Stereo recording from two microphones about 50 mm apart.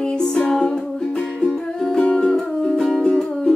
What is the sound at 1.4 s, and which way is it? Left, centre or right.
Music, centre.